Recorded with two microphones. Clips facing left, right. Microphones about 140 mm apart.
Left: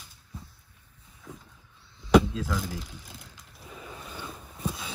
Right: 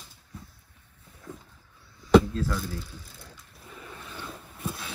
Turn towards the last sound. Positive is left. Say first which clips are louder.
# left 1 dB
turn(degrees=0)  # may be behind; listen again after turning